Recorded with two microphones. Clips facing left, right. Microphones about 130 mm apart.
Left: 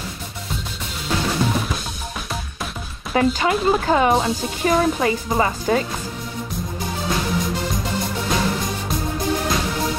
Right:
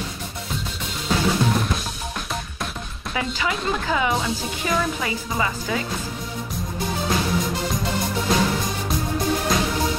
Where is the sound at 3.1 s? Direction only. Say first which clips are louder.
Left 8 dB; 45° left (ahead or behind).